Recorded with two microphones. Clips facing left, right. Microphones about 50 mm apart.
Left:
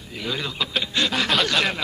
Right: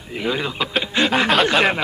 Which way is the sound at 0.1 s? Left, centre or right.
Right.